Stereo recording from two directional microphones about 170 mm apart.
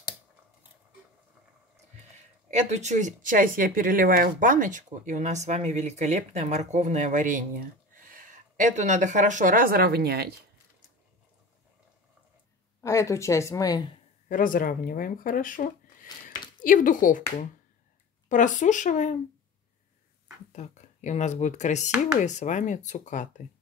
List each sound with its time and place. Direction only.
2.5 s speech: 45° right (ahead or behind); by 10.3 s 70° right (ahead or behind)
12.8 s speech: 20° left (ahead or behind)
14.3 s speech: 55° left (ahead or behind)
18.3 s speech: 50° left (ahead or behind)
20.5 s speech: 45° left (ahead or behind)